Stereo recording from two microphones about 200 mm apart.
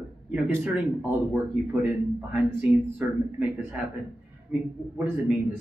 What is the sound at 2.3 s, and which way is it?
Speech, 10° right (ahead or behind).